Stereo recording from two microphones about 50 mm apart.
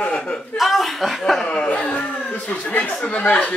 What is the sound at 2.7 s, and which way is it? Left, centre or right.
Speech, left.